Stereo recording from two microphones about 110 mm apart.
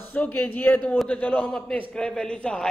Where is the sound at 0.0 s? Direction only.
15° left (ahead or behind).